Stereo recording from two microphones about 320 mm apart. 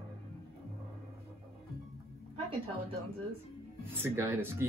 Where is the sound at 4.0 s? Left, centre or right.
Centre.